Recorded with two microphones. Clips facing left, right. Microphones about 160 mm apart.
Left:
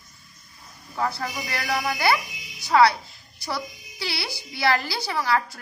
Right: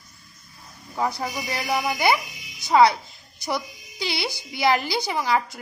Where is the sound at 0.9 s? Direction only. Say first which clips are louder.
Right 1 dB; 15° right (ahead or behind).